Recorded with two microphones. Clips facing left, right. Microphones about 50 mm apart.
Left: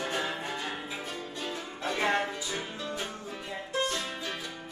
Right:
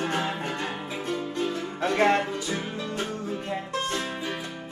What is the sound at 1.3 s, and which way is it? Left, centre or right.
Music, right.